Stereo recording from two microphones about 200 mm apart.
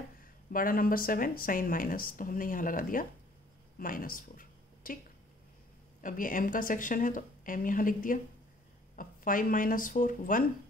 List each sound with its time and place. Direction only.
0.5 s speech: 45° left (ahead or behind)
3.8 s a sound: 45° left (ahead or behind)
5.9 s speech: 40° left (ahead or behind)